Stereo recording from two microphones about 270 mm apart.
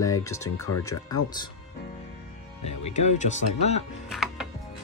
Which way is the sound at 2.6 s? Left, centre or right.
Left.